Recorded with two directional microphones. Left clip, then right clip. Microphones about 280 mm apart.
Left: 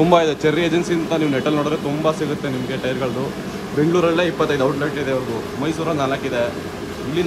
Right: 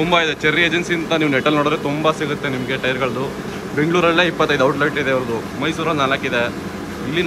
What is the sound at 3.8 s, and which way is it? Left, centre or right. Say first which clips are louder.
Speech: right 2 dB; centre.